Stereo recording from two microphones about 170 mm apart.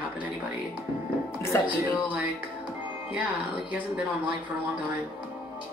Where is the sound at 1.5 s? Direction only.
15° left (ahead or behind).